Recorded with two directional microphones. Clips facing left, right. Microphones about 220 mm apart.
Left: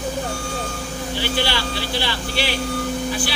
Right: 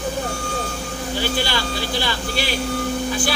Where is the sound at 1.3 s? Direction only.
45° right (ahead or behind).